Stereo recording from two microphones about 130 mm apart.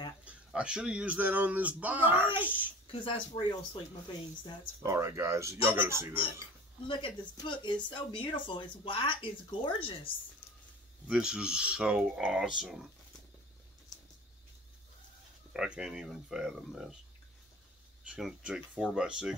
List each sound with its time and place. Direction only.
0.2 s speech: 10° right (ahead or behind)
2.9 s speech: 40° left (ahead or behind)
4.8 s speech: 20° right (ahead or behind)
6.9 s speech: 40° left (ahead or behind)
11.1 s speech: 5° right (ahead or behind)
15.5 s speech: 5° right (ahead or behind)
18.1 s speech: 5° right (ahead or behind)